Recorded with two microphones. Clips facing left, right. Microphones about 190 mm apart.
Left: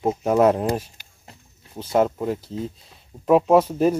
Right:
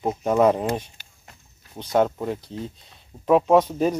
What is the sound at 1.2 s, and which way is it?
Walk, 25° left (ahead or behind).